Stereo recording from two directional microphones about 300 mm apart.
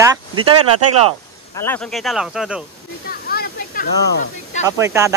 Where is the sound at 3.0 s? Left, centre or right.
Left.